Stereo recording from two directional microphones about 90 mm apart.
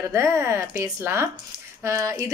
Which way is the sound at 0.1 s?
30° right (ahead or behind).